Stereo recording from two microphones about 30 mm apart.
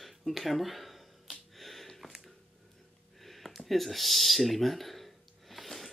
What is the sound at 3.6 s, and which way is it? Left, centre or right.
Speech, centre.